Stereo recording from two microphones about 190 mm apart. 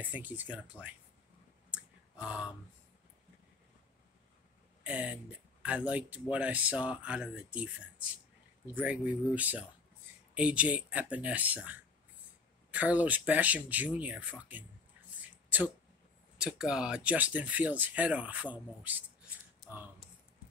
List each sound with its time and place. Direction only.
0.0 s speech: 10° right (ahead or behind)
1.7 s clicking: 5° right (ahead or behind)
4.8 s speech: 5° right (ahead or behind)
15.2 s a sound: 10° right (ahead or behind)
16.3 s speech: 5° right (ahead or behind)